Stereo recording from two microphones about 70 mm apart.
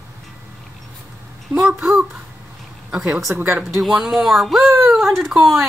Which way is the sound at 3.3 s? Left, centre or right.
Right.